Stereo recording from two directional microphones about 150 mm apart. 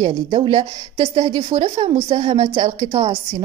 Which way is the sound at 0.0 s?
30° right (ahead or behind).